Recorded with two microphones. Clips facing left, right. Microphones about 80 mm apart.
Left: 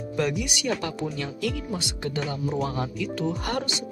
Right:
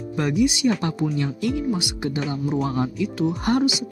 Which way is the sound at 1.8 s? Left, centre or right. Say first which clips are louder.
Right 4 dB; centre.